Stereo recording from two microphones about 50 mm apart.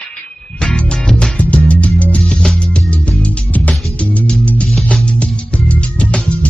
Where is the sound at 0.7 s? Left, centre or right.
Centre.